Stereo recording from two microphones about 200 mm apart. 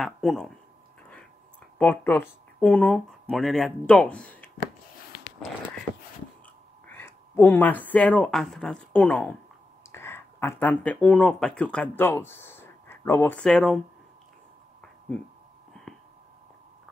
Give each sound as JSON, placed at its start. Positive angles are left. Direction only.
{"t": 0.0, "sound": "speech", "side_deg": 0}
{"t": 1.8, "sound": "speech", "side_deg": 10}
{"t": 6.9, "sound": "speech", "side_deg": 10}
{"t": 15.8, "sound": "a sound", "side_deg": 5}